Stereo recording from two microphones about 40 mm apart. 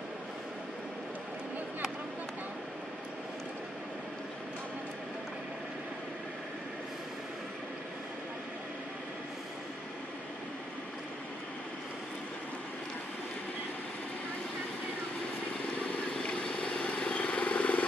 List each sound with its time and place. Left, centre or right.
16.2 s vehicle: left